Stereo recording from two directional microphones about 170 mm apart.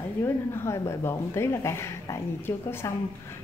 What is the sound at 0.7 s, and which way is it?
A woman's voice, 15° left (ahead or behind).